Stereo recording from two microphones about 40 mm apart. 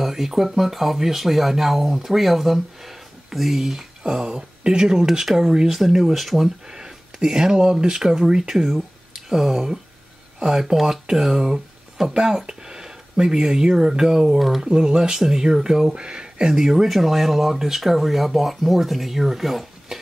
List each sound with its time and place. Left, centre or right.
0.0 s speech: centre
6.7 s speech: centre
8.7 s a sound: centre
10.4 s speech: centre
16.5 s speech: centre